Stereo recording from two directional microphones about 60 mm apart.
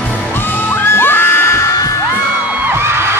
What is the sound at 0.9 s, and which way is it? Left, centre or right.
Music, left.